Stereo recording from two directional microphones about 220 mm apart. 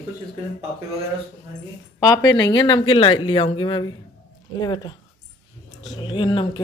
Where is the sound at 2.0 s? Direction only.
15° left (ahead or behind).